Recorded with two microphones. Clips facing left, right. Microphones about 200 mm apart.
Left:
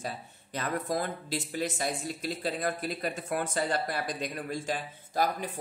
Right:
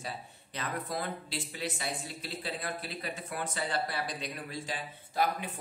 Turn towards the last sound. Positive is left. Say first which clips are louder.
# left 2 dB
turn(degrees=45)  # may be behind; listen again after turning